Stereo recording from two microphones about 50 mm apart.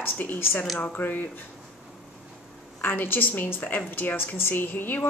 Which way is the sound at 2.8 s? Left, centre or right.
Left.